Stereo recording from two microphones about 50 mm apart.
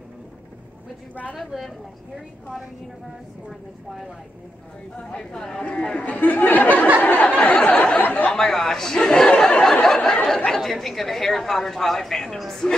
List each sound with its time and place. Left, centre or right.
1.3 s speech: centre
4.9 s speech: left
5.4 s speech: centre
5.9 s speech: left
7.0 s a sound: left
8.3 s speech: centre